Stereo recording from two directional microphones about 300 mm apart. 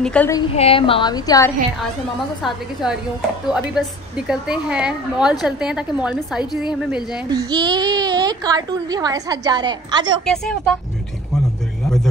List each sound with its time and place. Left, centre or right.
0.0 s a woman's voice: centre
0.6 s a woman's voice: centre
2.4 s a woman's voice: centre
7.2 s a child's voice: centre
10.2 s a woman's voice: centre